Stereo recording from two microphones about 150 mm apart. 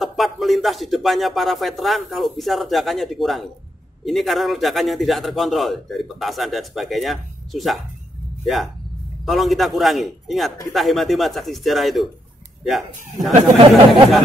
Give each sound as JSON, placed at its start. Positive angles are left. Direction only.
{"t": 0.0, "sound": "a man's voice", "side_deg": 0}
{"t": 9.2, "sound": "a man's voice", "side_deg": 0}
{"t": 13.3, "sound": "speech", "side_deg": -35}